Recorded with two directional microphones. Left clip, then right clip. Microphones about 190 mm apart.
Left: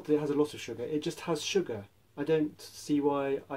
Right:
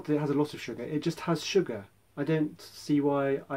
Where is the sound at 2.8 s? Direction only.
15° right (ahead or behind).